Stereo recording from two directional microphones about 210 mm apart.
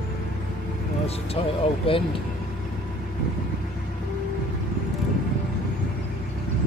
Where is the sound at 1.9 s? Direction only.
25° left (ahead or behind).